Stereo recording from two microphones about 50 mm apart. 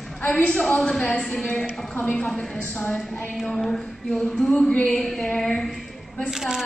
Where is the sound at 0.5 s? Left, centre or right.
Centre.